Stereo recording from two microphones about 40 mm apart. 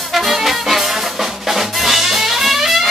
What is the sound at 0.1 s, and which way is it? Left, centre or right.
Music, centre.